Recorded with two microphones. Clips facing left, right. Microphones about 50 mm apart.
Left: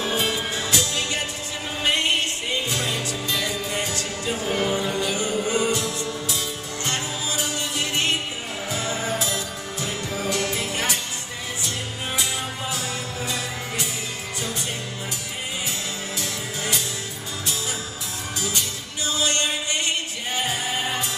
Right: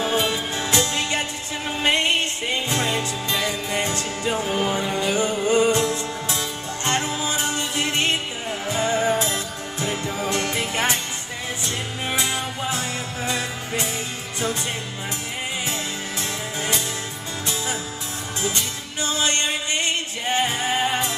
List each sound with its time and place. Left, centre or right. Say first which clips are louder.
0.6 s music: right 2 dB; right
12.7 s music: right 2 dB; right
16.2 s music: right 2 dB; right
19.1 s music: even; right